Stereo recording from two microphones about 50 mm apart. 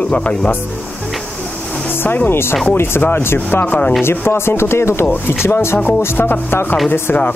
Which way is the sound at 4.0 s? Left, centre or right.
Left.